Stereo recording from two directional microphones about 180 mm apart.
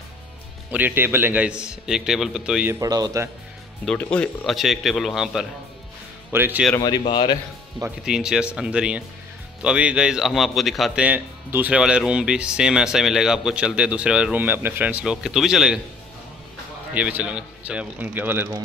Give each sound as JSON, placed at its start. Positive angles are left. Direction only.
{"t": 0.7, "sound": "a man's voice", "side_deg": -10}
{"t": 3.8, "sound": "a man's voice", "side_deg": 5}
{"t": 6.8, "sound": "speech", "side_deg": 25}
{"t": 8.0, "sound": "a man's voice", "side_deg": -5}
{"t": 16.9, "sound": "a man's voice", "side_deg": -5}